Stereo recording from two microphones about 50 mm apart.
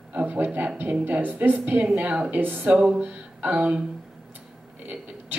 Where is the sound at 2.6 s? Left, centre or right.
Right.